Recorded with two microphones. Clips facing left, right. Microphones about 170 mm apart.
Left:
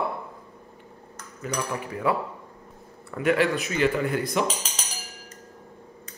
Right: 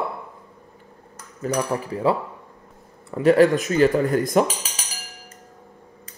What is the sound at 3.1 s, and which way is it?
Speech, 40° right (ahead or behind).